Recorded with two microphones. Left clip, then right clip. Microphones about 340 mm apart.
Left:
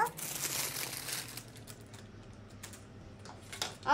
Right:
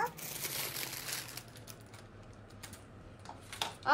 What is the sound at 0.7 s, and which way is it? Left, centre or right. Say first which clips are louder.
Crumpling: left 1 dB; centre.